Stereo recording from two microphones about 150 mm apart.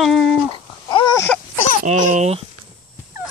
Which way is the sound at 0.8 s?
30° left (ahead or behind).